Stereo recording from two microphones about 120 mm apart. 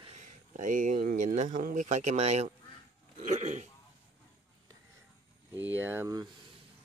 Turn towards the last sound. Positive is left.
turn(degrees=-15)  # may be behind; listen again after turning